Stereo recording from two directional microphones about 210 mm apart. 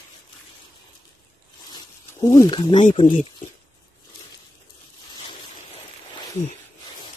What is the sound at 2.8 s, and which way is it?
Speech, 35° left (ahead or behind).